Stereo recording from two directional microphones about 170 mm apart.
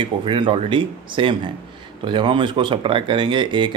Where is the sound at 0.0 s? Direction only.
30° right (ahead or behind).